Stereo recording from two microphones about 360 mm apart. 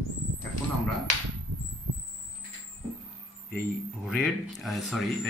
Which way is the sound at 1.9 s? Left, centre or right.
Right.